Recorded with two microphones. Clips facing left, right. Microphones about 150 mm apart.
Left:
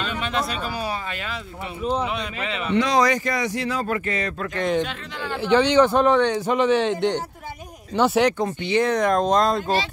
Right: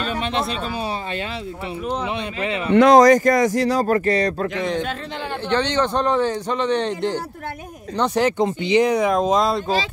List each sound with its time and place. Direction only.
0.0 s a sound: 35° right (ahead or behind)
2.7 s speech: 50° right (ahead or behind); by 4.5 s 35° right (ahead or behind)
4.6 s a man's voice: centre (ahead or behind)
8.4 s speech: 20° right (ahead or behind)